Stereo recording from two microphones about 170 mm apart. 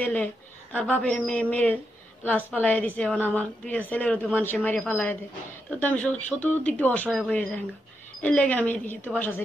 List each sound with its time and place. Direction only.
0.0 s a woman's voice: 10° left (ahead or behind)